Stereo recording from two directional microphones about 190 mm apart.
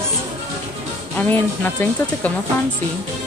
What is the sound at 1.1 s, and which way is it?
Speech, 10° left (ahead or behind).